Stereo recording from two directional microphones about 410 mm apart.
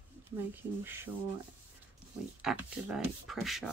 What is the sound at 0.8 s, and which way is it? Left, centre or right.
Speech, centre.